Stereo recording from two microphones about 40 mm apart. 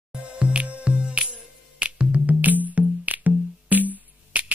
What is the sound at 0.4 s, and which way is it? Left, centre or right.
Music, right.